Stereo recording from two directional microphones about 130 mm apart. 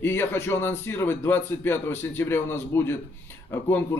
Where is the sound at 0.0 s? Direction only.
15° left (ahead or behind).